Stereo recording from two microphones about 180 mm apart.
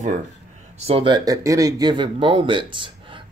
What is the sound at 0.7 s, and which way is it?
Speech, 30° right (ahead or behind).